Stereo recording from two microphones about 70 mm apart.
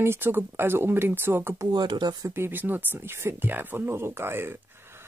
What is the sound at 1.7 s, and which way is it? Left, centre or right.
Speech, right.